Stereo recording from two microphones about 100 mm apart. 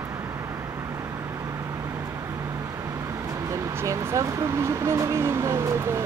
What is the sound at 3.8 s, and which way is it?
Speech, 30° right (ahead or behind).